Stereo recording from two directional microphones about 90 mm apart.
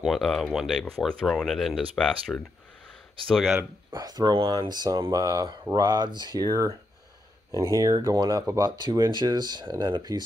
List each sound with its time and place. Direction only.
0.0 s speech: centre (ahead or behind)
3.9 s speech: 45° right (ahead or behind)
7.5 s speech: 40° right (ahead or behind); by 10.2 s 55° right (ahead or behind)